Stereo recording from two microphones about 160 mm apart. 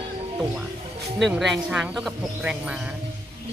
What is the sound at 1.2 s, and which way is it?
Speech, centre (ahead or behind).